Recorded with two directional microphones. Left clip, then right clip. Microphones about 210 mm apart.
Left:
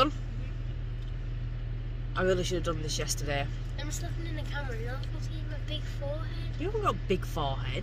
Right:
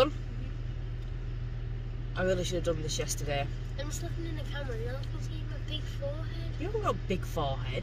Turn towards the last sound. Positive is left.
turn(degrees=5)  # may be behind; listen again after turning